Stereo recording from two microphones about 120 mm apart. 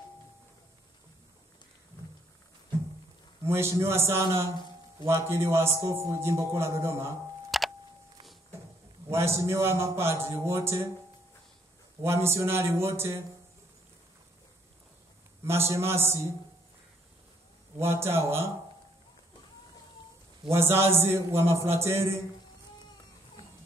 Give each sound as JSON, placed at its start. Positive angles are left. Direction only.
{"t": 3.4, "sound": "a man's voice", "side_deg": -20}
{"t": 7.5, "sound": "a sound", "side_deg": 0}
{"t": 9.1, "sound": "a man's voice", "side_deg": -25}
{"t": 12.0, "sound": "a man's voice", "side_deg": -20}
{"t": 15.4, "sound": "a man's voice", "side_deg": -20}
{"t": 17.7, "sound": "a man's voice", "side_deg": -20}
{"t": 20.4, "sound": "a man's voice", "side_deg": -20}